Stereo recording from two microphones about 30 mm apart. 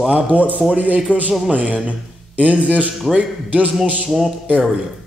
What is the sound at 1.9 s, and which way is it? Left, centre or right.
A man's voice, right.